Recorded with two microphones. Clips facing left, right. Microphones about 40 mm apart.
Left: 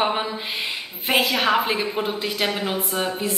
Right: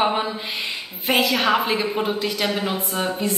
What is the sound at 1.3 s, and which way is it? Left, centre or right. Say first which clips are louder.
A woman's voice: right 1 dB; centre.